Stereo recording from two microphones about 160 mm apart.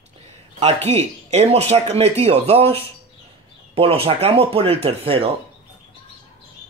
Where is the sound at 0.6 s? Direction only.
45° right (ahead or behind).